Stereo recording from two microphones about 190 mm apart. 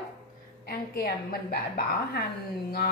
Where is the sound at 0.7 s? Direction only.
55° left (ahead or behind).